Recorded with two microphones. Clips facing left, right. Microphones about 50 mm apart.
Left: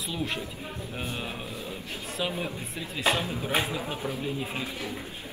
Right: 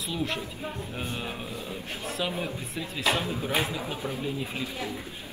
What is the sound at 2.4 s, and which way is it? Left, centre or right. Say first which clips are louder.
Speech: right 1 dB; centre.